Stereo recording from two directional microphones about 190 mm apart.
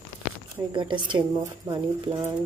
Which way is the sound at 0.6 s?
25° right (ahead or behind).